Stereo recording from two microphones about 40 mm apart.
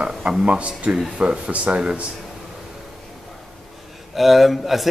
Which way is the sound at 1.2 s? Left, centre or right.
Right.